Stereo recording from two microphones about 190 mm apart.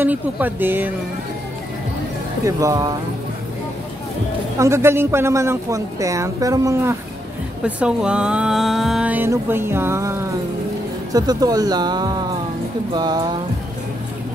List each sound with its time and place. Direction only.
0.0 s speech: 10° right (ahead or behind)
2.4 s speech: 20° right (ahead or behind)
4.6 s speech: 15° right (ahead or behind)